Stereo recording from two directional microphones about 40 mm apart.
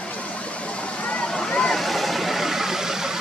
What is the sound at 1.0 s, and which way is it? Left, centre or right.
Vehicle, left.